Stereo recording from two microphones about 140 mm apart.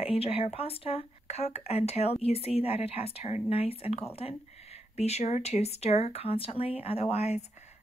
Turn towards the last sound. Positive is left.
turn(degrees=50)  # may be behind; listen again after turning